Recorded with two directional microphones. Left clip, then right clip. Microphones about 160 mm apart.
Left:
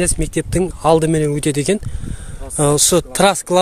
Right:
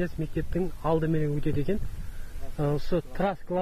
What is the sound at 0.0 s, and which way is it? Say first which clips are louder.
Speech: left 13 dB; 15° left (ahead or behind).